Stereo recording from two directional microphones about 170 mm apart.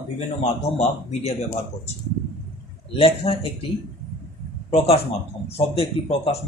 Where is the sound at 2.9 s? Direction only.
35° left (ahead or behind).